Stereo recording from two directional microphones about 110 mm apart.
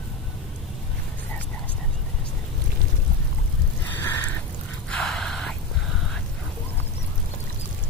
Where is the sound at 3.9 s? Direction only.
15° left (ahead or behind).